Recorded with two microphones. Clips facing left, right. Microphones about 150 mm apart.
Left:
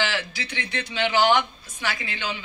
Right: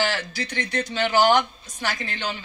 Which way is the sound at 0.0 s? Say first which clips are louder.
Right 2 dB; 40° right (ahead or behind).